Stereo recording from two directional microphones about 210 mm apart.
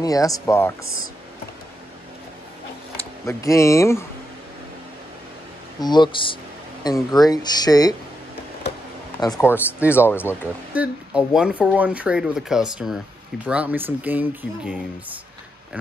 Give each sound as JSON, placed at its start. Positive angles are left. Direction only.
{"t": 0.0, "sound": "speech", "side_deg": 15}
{"t": 3.0, "sound": "speech", "side_deg": 15}
{"t": 5.8, "sound": "speech", "side_deg": 20}
{"t": 9.2, "sound": "speech", "side_deg": 15}
{"t": 10.7, "sound": "speech", "side_deg": -5}